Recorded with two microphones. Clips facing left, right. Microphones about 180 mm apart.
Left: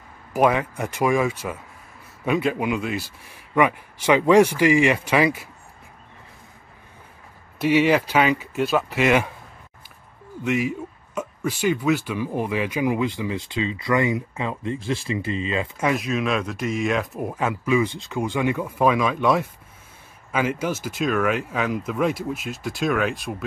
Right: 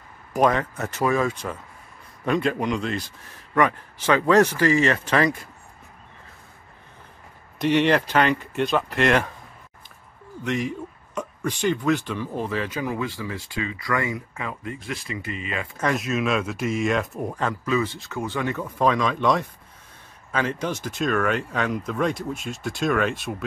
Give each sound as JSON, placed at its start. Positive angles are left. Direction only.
{"t": 0.3, "sound": "speech", "side_deg": 10}
{"t": 7.5, "sound": "speech", "side_deg": 5}
{"t": 10.4, "sound": "a man's voice", "side_deg": 5}
{"t": 15.8, "sound": "speech", "side_deg": 0}